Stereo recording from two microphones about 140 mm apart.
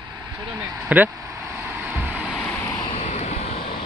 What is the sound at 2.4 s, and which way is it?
Vehicle, 20° left (ahead or behind).